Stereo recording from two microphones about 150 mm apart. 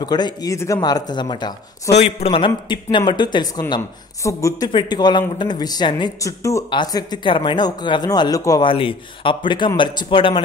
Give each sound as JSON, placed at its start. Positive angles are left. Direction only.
{"t": 0.0, "sound": "speech", "side_deg": 25}
{"t": 1.9, "sound": "speech", "side_deg": 45}
{"t": 8.6, "sound": "a man's voice", "side_deg": 35}